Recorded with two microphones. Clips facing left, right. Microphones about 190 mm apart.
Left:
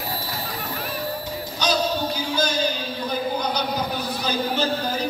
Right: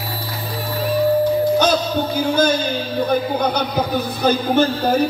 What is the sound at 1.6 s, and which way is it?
A man's voice, 55° right (ahead or behind).